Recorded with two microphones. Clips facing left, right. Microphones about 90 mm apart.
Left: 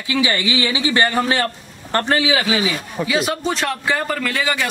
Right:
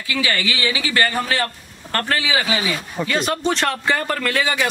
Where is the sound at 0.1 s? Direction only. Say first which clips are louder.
Left 3 dB; 20° left (ahead or behind).